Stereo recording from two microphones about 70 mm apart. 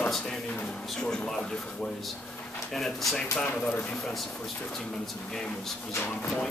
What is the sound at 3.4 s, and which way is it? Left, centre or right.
Speech, centre.